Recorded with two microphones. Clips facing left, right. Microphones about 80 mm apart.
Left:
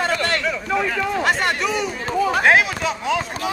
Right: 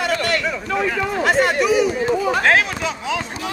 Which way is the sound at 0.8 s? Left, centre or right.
Centre.